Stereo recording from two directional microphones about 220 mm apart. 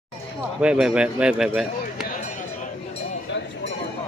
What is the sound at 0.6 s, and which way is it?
Speech, 5° right (ahead or behind).